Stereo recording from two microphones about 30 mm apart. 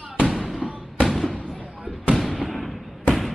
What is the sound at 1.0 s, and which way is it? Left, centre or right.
Fireworks, centre.